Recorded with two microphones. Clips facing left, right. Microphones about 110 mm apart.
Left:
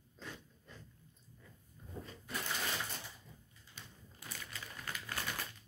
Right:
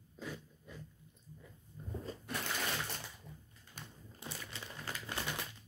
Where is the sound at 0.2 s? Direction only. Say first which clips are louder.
Right 5 dB; 10° right (ahead or behind).